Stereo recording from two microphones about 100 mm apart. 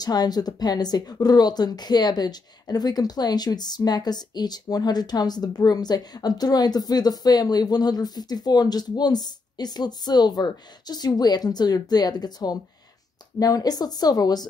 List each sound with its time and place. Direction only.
0.0 s a woman's voice: 40° left (ahead or behind)